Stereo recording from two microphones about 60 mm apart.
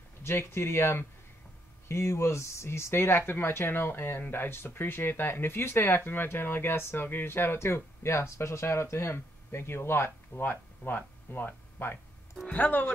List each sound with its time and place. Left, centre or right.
0.2 s speech: left